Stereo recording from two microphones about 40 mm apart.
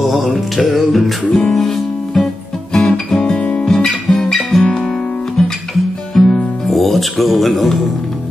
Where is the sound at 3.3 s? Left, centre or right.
Left.